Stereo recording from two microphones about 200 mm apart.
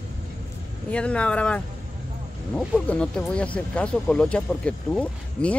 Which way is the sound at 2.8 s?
5° left (ahead or behind).